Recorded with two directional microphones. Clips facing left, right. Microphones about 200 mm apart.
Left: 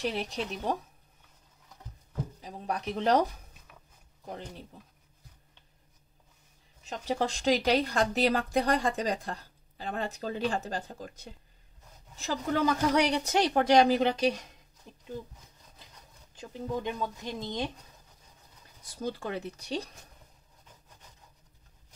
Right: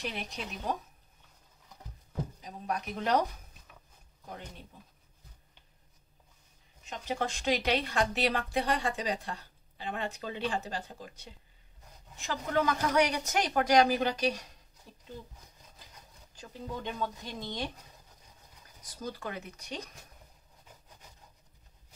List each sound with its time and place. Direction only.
0.0 s speech: 35° left (ahead or behind)
2.4 s speech: 30° left (ahead or behind)
6.9 s speech: 35° left (ahead or behind)
16.3 s speech: 15° left (ahead or behind)
19.0 s speech: 30° left (ahead or behind)